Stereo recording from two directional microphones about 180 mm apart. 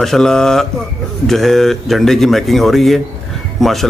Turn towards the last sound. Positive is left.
turn(degrees=0)  # may be behind; listen again after turning